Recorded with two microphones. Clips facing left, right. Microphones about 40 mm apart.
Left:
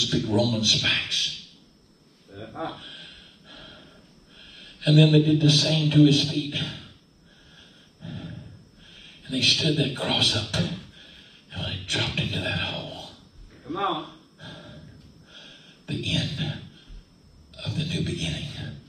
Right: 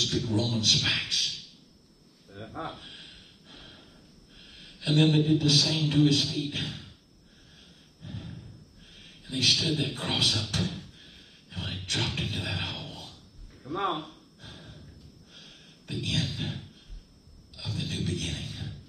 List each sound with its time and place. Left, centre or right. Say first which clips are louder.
0.0 s a man's voice: left 5 dB; left
2.3 s a sound: left 4 dB; left
5.3 s a man's voice: left 3 dB; left
7.5 s a sound: left 4 dB; left
8.8 s a man's voice: left 5 dB; left
10.6 s a sound: left 3 dB; left
15.9 s a man's voice: left 3 dB; left
17.6 s a man's voice: left 5 dB; left
18.4 s music: left 3 dB; centre